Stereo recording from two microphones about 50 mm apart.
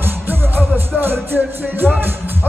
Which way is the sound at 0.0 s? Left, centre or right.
Right.